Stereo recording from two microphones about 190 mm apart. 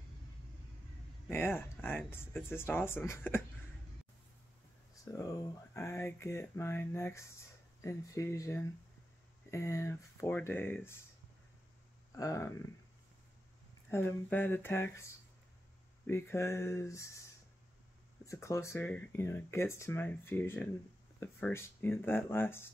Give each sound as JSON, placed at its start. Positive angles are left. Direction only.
{"t": 1.3, "sound": "speech", "side_deg": 10}
{"t": 5.0, "sound": "speech", "side_deg": 15}
{"t": 12.2, "sound": "speech", "side_deg": 15}
{"t": 13.8, "sound": "speech", "side_deg": 10}
{"t": 18.2, "sound": "speech", "side_deg": 15}